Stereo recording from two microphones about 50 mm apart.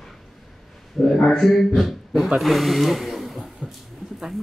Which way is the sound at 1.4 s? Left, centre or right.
Centre.